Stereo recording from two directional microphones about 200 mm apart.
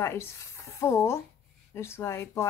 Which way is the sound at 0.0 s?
10° left (ahead or behind).